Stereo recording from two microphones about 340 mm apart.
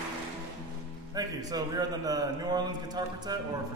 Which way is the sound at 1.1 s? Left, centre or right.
Centre.